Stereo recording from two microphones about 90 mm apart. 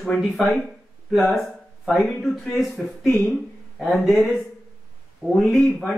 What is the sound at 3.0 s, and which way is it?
Speech, 20° left (ahead or behind).